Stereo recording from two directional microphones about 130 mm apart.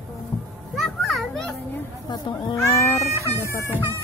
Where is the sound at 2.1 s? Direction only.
35° left (ahead or behind).